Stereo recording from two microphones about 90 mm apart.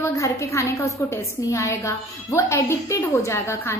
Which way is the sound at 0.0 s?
35° left (ahead or behind).